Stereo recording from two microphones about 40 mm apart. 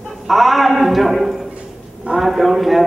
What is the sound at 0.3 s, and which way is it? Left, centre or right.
A man's voice, centre.